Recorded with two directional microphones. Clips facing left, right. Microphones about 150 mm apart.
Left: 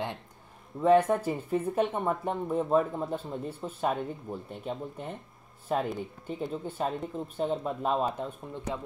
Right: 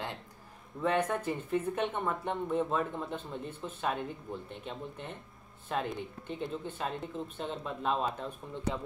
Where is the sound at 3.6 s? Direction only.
35° left (ahead or behind).